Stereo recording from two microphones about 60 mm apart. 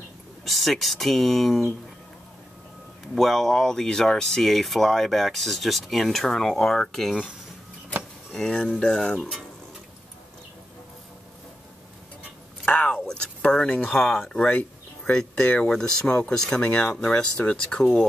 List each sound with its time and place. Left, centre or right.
0.5 s speech: centre
3.2 s speech: centre
8.3 s speech: centre
12.6 s a sound: left
13.0 s speech: centre
14.0 s speech: centre
14.4 s a sound: left
15.6 s speech: centre